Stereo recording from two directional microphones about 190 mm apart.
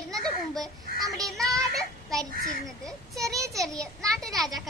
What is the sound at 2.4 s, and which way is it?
Speech, 50° left (ahead or behind).